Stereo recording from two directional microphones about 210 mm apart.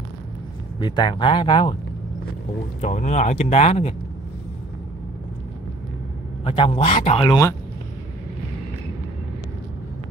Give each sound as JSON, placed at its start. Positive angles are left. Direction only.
{"t": 0.7, "sound": "speech", "side_deg": 20}
{"t": 2.8, "sound": "speech", "side_deg": 35}
{"t": 6.4, "sound": "speech", "side_deg": 25}